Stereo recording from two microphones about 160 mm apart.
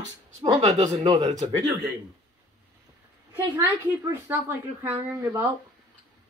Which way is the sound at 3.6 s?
15° right (ahead or behind).